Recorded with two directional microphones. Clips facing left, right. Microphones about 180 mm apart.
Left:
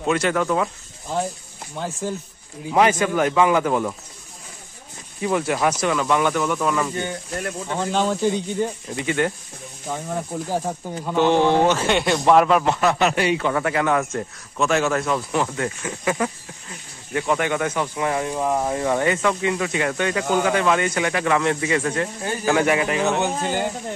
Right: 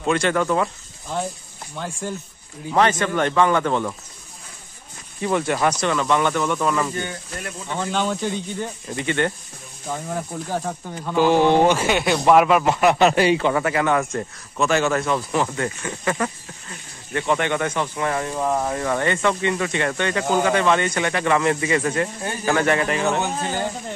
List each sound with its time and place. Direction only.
0.0 s speech: 5° left (ahead or behind)
1.8 s speech: 5° left (ahead or behind)
5.2 s speech: 5° left (ahead or behind)
7.3 s speech: 45° left (ahead or behind)
7.9 s speech: 5° left (ahead or behind)
10.3 s speech: 15° left (ahead or behind)
11.1 s a man's voice: 5° right (ahead or behind)
13.0 s speech: 35° right (ahead or behind)
13.5 s speech: 5° right (ahead or behind)
22.4 s speech: 10° left (ahead or behind)